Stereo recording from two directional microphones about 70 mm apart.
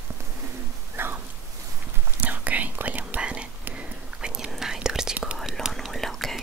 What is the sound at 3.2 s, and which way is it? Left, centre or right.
Whispering, centre.